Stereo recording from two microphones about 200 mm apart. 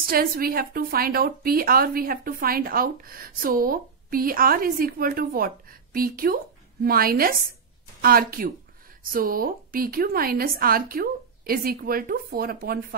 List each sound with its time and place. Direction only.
0.0 s a woman's voice: 45° right (ahead or behind)